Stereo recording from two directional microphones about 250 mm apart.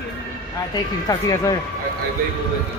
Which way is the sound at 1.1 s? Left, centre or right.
Centre.